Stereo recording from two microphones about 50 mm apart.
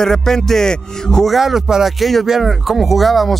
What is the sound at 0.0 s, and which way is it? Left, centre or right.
A man's voice, centre.